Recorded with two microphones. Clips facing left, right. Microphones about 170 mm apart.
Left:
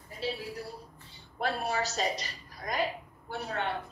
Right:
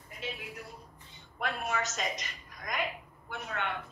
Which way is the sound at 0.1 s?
35° left (ahead or behind).